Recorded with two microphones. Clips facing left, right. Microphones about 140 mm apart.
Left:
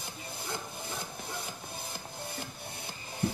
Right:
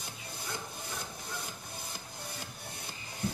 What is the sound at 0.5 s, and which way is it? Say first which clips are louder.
Music: left 2 dB; 25° left (ahead or behind).